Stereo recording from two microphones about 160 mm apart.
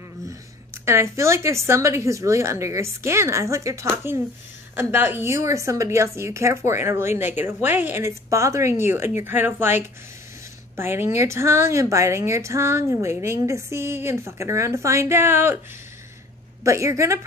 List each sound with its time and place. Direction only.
0.8 s speech: 15° right (ahead or behind)
16.6 s speech: 20° right (ahead or behind)